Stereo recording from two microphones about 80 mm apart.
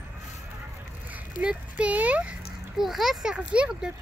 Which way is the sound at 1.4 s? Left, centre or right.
Centre.